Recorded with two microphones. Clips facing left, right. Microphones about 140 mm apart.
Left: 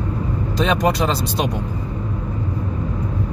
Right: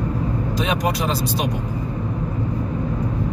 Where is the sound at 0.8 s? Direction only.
75° left (ahead or behind).